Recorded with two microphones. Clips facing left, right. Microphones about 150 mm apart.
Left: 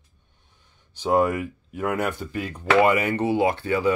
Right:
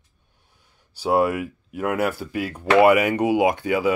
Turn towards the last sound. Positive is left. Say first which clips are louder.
# right 2 dB
turn(degrees=-10)  # may be behind; listen again after turning